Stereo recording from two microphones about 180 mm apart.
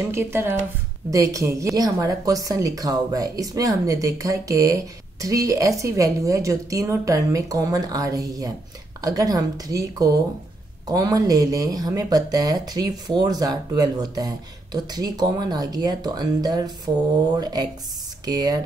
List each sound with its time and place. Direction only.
0.1 s a woman's voice: 15° right (ahead or behind)